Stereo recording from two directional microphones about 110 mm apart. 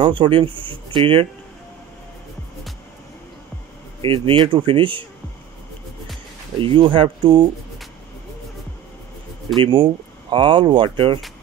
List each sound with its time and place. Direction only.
0.0 s speech: 50° right (ahead or behind)
4.0 s speech: 55° right (ahead or behind)
6.6 s speech: 50° right (ahead or behind)
9.6 s speech: 40° right (ahead or behind)